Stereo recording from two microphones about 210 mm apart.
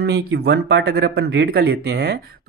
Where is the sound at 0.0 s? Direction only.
50° right (ahead or behind).